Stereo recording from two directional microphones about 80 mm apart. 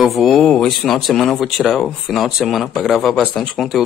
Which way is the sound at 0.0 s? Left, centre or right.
Centre.